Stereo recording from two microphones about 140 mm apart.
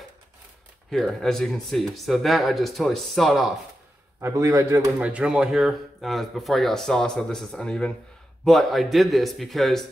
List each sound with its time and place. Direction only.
0.8 s speech: 5° left (ahead or behind)
4.2 s a man's voice: 20° right (ahead or behind)
5.0 s speech: 5° right (ahead or behind)